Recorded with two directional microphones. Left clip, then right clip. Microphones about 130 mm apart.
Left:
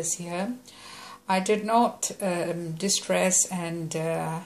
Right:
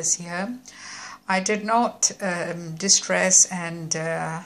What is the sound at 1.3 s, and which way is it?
A woman's voice, 15° left (ahead or behind).